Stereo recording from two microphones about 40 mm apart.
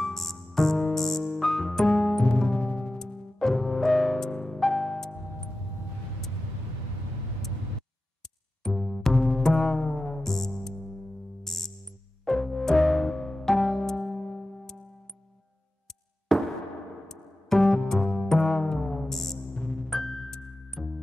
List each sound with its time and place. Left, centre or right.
0.0 s music: centre
2.2 s music: centre
3.3 s music: centre
8.6 s music: centre
9.1 s music: left
9.4 s music: centre
16.3 s a sound: centre
17.1 s music: centre
19.5 s music: left
19.9 s music: centre